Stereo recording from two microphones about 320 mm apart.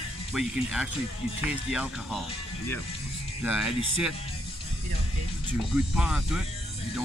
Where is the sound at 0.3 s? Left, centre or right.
Centre.